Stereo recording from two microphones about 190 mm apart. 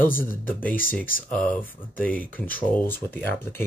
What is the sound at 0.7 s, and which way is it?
Speech, 50° left (ahead or behind).